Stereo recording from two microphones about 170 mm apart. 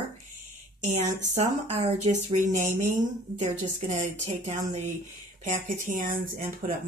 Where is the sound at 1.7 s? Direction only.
40° right (ahead or behind).